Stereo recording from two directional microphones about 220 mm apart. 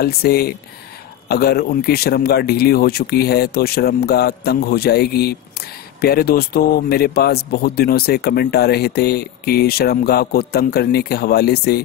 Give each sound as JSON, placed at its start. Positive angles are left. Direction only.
{"t": 0.0, "sound": "speech", "side_deg": 45}